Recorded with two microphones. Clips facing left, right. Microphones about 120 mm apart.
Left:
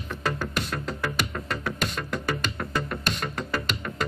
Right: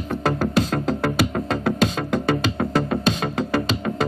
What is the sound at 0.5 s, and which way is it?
Music, 90° right.